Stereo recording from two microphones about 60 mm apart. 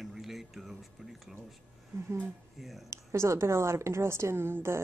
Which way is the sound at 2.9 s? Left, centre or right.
Right.